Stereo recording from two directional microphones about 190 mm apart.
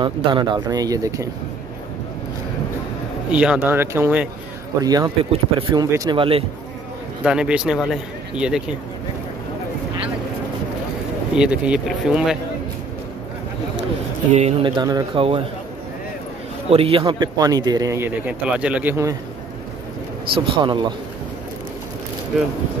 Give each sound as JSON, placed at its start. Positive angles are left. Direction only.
{"t": 0.0, "sound": "a man's voice", "side_deg": -25}
{"t": 3.3, "sound": "a man's voice", "side_deg": -5}
{"t": 7.2, "sound": "speech", "side_deg": -5}
{"t": 11.3, "sound": "speech", "side_deg": -5}
{"t": 14.6, "sound": "a man's voice", "side_deg": -25}
{"t": 16.6, "sound": "a man's voice", "side_deg": -30}
{"t": 20.3, "sound": "a man's voice", "side_deg": -25}